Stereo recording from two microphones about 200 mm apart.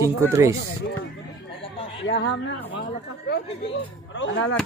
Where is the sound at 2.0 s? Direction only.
60° left (ahead or behind).